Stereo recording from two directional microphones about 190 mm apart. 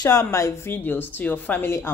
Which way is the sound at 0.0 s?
15° left (ahead or behind).